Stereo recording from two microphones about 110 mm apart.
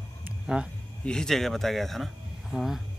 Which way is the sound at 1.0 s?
5° left (ahead or behind).